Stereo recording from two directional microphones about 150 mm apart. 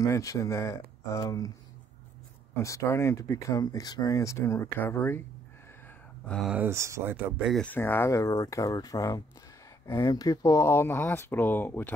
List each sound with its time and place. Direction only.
0.0 s speech: 20° left (ahead or behind)
2.5 s speech: 20° left (ahead or behind)
6.2 s speech: 5° left (ahead or behind)
6.5 s speech: 15° right (ahead or behind)
7.6 s speech: 15° left (ahead or behind)